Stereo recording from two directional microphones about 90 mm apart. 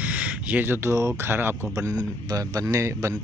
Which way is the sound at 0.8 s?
30° right (ahead or behind).